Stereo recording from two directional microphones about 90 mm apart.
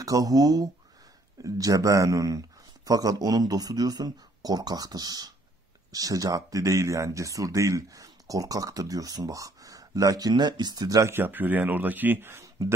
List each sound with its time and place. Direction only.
0.0 s a man's voice: 40° right (ahead or behind)
11.1 s speech: 25° right (ahead or behind)